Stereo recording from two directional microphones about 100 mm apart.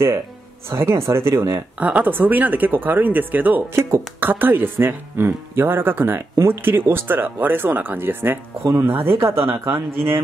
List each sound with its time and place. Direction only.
0.7 s speech: 25° right (ahead or behind)
1.8 s speech: 15° right (ahead or behind)